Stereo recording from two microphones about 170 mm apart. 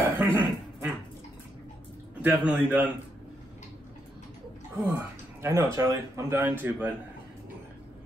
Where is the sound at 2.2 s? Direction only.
10° right (ahead or behind).